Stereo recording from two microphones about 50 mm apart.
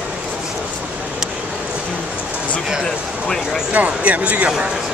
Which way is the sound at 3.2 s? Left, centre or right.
Centre.